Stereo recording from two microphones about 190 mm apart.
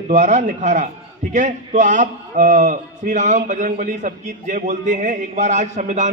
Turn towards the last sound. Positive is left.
turn(degrees=-40)  # may be behind; listen again after turning